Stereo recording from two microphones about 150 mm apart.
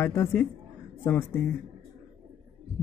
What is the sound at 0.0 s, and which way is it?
Speech, 15° left (ahead or behind).